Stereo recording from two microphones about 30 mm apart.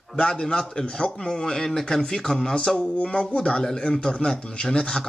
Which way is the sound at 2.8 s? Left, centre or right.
Left.